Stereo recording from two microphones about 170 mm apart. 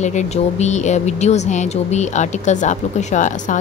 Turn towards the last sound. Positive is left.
turn(degrees=45)  # may be behind; listen again after turning